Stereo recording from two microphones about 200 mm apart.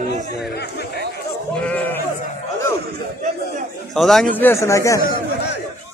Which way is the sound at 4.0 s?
Centre (ahead or behind).